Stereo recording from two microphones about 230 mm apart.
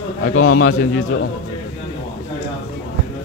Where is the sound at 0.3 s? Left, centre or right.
Left.